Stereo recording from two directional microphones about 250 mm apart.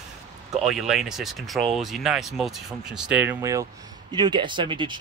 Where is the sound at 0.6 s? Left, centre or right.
Centre.